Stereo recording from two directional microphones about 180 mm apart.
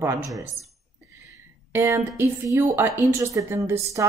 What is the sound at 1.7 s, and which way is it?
A woman's voice, 15° right (ahead or behind).